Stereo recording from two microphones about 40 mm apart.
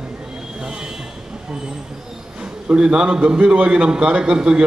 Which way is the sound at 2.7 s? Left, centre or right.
Right.